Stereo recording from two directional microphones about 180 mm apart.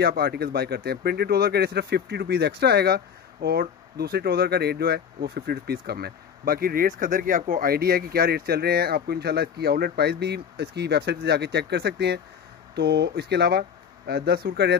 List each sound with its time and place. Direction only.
0.0 s speech: 65° right (ahead or behind)